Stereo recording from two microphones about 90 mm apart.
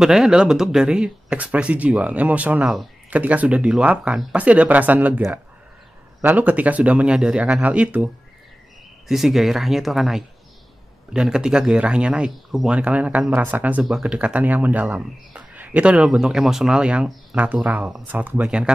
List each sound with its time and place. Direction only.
0.0 s a man's voice: 5° right (ahead or behind)
6.2 s a man's voice: 20° right (ahead or behind)
9.0 s a man's voice: 5° right (ahead or behind)